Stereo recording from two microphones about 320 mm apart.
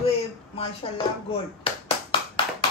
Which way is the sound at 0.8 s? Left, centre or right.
Centre.